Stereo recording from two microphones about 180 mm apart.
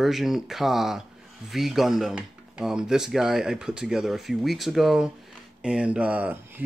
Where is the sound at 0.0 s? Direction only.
Centre (ahead or behind).